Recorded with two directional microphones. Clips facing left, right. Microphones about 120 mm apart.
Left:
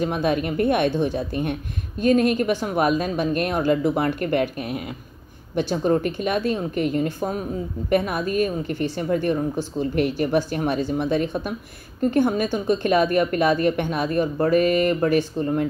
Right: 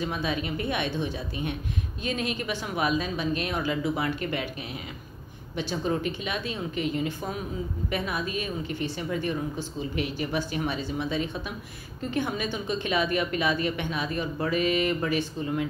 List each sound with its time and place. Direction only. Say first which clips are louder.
0.0 s speech: left 7 dB; 50° left (ahead or behind)